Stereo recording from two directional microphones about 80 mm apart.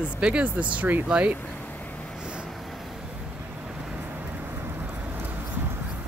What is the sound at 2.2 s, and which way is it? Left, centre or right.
Vehicle, centre.